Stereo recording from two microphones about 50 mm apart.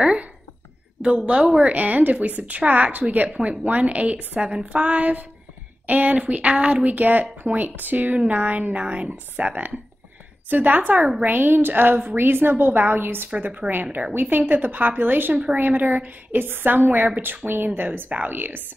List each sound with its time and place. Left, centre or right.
1.0 s a woman's voice: right
4.4 s a woman's voice: centre; by 13.3 s right
13.4 s speech: right